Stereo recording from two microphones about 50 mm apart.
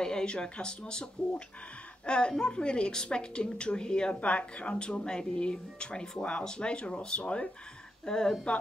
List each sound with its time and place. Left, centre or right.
0.0 s speech: centre
2.0 s a woman's voice: centre